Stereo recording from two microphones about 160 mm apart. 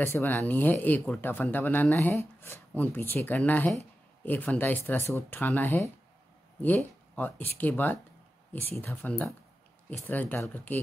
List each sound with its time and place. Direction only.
0.0 s speech: 15° left (ahead or behind)